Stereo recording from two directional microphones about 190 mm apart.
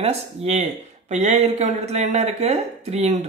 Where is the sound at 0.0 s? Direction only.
35° right (ahead or behind).